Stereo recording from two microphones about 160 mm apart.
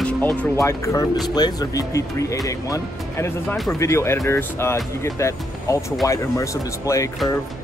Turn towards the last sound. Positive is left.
turn(degrees=20)  # may be behind; listen again after turning